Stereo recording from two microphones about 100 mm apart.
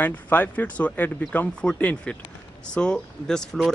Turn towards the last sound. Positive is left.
turn(degrees=5)  # may be behind; listen again after turning